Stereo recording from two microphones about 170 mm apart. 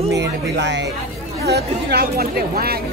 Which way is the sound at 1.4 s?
70° right (ahead or behind).